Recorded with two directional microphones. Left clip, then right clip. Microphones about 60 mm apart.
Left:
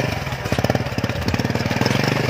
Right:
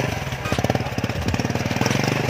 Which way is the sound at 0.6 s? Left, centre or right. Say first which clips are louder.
Left 3 dB; left.